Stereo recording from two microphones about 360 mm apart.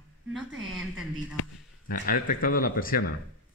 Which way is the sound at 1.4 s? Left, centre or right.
Left.